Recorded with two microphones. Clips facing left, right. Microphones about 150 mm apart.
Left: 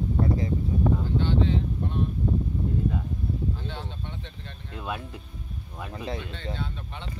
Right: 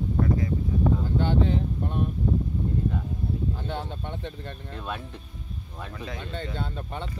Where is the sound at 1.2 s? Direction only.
45° right (ahead or behind).